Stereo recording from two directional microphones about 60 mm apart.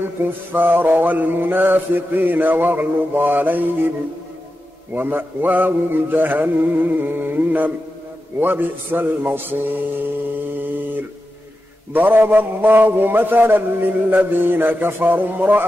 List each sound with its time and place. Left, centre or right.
0.2 s mantra: right
4.9 s mantra: right
11.9 s mantra: right